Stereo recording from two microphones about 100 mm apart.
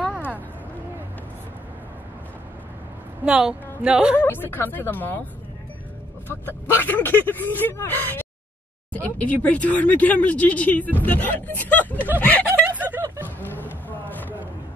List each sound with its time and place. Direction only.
3.3 s a woman's voice: 10° right (ahead or behind)
4.2 s speech: 20° left (ahead or behind)
6.2 s speech: 20° left (ahead or behind)
12.6 s music: 15° right (ahead or behind)
13.5 s a sound: 20° left (ahead or behind)